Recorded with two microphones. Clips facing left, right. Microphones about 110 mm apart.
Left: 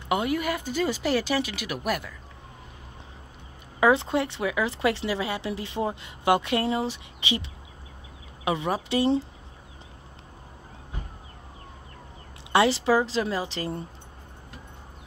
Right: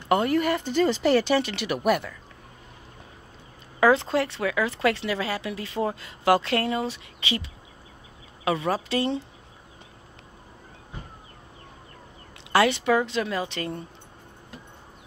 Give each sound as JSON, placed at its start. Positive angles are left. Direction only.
{"t": 0.1, "sound": "speech", "side_deg": 10}
{"t": 3.8, "sound": "speech", "side_deg": 20}
{"t": 8.5, "sound": "speech", "side_deg": 20}
{"t": 12.5, "sound": "speech", "side_deg": 30}